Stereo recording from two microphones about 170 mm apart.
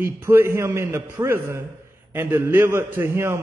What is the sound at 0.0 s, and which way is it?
A man's voice, 15° right (ahead or behind).